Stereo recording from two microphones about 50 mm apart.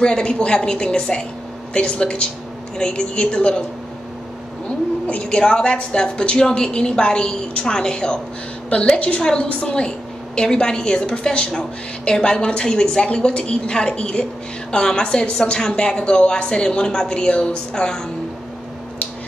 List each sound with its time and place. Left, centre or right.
0.0 s a woman's voice: centre
4.6 s a sound: left
5.3 s a woman's voice: centre